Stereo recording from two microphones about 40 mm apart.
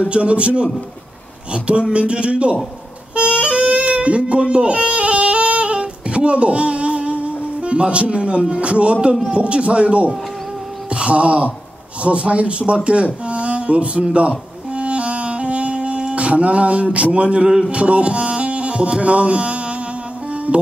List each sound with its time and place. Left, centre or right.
0.1 s speech: right
3.2 s music: right
9.3 s speech: right
10.9 s a sound: right
12.0 s speech: right
14.7 s music: right